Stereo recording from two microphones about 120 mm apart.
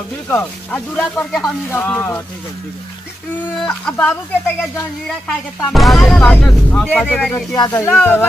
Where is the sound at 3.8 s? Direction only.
10° left (ahead or behind).